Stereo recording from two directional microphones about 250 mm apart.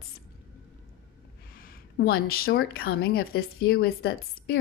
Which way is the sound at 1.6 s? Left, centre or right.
Left.